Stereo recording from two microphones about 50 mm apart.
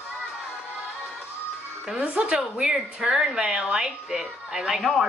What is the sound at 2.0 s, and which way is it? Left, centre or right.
A woman's voice, centre.